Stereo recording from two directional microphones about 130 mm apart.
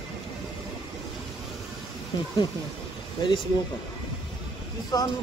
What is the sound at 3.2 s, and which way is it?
Speech, 35° left (ahead or behind).